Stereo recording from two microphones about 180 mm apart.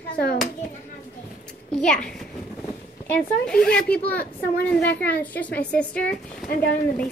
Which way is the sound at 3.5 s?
5° left (ahead or behind).